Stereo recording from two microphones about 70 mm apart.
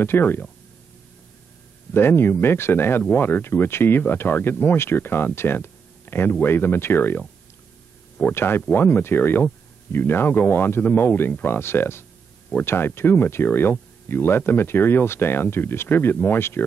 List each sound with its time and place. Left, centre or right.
0.0 s speech: left
2.0 s speech: left
8.2 s speech: left